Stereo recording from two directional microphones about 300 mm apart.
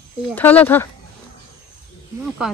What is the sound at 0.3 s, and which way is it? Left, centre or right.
Speech, centre.